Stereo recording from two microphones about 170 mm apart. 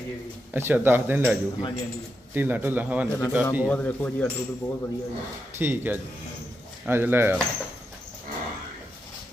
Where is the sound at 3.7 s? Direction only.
10° left (ahead or behind).